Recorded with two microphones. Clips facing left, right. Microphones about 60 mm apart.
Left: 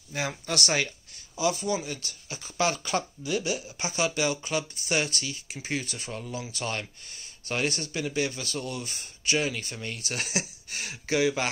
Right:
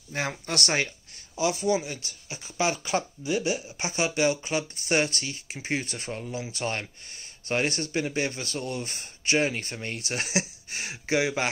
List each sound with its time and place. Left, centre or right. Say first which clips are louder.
0.1 s speech: right 1 dB; right